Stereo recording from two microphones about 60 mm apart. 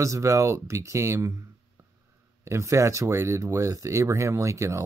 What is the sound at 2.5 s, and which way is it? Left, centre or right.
Speech, right.